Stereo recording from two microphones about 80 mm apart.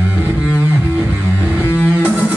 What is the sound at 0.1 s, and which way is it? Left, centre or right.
Music, right.